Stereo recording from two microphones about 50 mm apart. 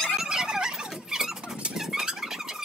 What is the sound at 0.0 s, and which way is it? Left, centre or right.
Squeal, centre.